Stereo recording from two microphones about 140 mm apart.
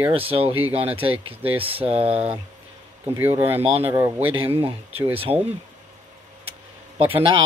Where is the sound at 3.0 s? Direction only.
15° right (ahead or behind).